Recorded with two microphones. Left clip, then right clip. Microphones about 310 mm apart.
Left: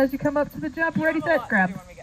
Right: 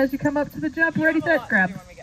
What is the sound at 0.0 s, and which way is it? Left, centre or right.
Speech, centre.